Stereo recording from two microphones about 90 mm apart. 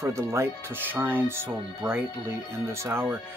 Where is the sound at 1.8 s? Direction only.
40° right (ahead or behind); by 3.2 s 25° right (ahead or behind).